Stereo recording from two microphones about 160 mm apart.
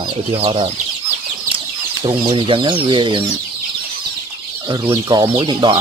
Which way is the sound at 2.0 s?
30° right (ahead or behind).